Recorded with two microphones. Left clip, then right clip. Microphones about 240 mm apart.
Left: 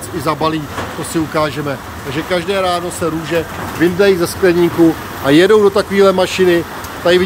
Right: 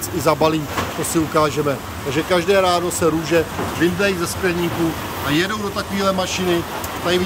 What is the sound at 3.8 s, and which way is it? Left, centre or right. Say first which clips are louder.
Speech: left 8 dB; centre.